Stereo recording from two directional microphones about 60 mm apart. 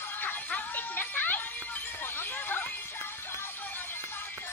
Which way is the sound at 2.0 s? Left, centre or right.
Left.